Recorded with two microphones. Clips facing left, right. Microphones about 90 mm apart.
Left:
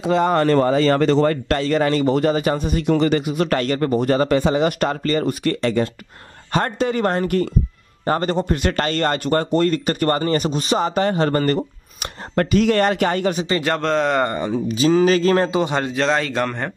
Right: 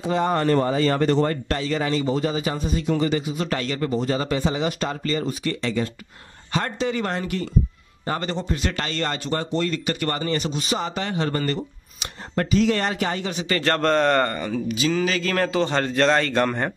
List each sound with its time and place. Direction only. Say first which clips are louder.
0.0 s a man's voice: left 5 dB; 85° left; by 13.4 s 55° left (ahead or behind)
13.7 s speech: right 1 dB; centre (ahead or behind)
14.2 s speech: left 4 dB; 20° left (ahead or behind)
14.7 s speech: left 8 dB; 35° left (ahead or behind)
15.3 s speech: left 4 dB; 25° left (ahead or behind)
15.6 s a man's voice: even; 10° left (ahead or behind)